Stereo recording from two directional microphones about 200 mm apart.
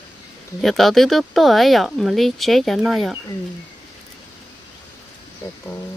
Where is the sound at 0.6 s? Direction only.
Centre (ahead or behind).